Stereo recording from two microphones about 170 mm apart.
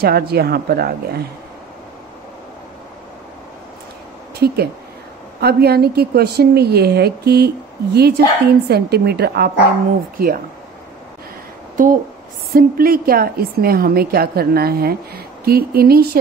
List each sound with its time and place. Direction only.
0.0 s a woman's voice: 65° right (ahead or behind)
4.4 s a woman's voice: 70° right (ahead or behind)
10.1 s a woman's voice: 60° right (ahead or behind)
11.7 s a woman's voice: 50° right (ahead or behind)